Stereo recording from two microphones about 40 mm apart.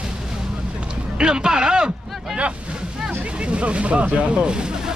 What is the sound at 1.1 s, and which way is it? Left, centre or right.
Speech, right.